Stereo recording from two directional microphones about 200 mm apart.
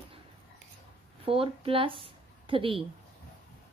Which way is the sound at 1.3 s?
25° right (ahead or behind).